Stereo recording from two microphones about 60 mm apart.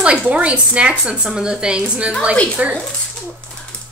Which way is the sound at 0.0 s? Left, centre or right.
Right.